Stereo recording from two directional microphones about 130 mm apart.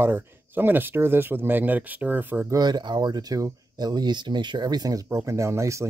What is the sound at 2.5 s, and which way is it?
Speech, 35° right (ahead or behind).